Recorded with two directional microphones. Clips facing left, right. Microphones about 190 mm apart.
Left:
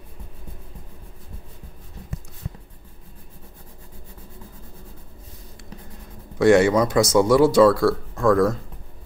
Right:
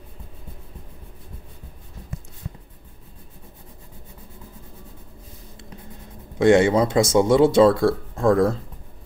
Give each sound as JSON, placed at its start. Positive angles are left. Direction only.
{"t": 6.3, "sound": "speech", "side_deg": -25}